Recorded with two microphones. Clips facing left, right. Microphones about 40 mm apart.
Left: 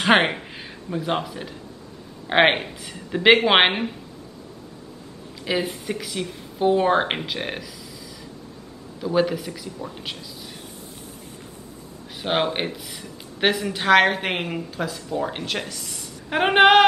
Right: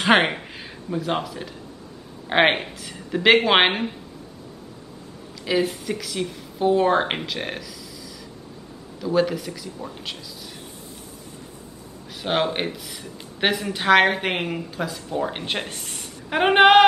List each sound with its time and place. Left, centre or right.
0.1 s speech: centre
5.5 s speech: centre
9.0 s speech: centre
12.2 s speech: centre
15.6 s a sound: right
16.3 s speech: centre